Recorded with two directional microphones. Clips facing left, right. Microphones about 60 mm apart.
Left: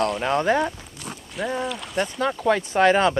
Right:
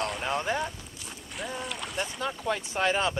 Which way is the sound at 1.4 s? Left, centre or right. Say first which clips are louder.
Left 8 dB; left.